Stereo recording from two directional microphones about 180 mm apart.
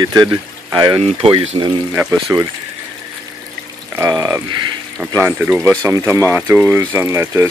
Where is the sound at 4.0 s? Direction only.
20° right (ahead or behind).